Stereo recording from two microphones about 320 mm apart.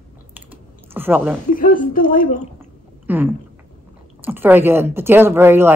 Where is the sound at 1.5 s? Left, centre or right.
Left.